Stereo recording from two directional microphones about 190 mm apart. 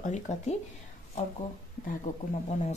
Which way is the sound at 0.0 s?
40° left (ahead or behind).